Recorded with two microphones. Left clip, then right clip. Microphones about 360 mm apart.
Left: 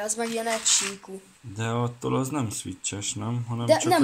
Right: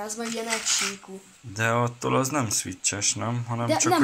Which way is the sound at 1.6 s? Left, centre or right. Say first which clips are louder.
Right 5 dB; centre.